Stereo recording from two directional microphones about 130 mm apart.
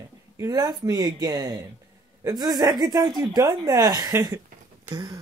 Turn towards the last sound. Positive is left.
turn(degrees=-30)  # may be behind; listen again after turning